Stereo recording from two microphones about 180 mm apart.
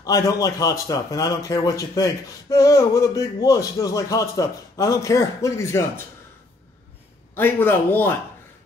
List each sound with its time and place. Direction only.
0.0 s a man's voice: 20° left (ahead or behind)
7.3 s speech: 10° left (ahead or behind)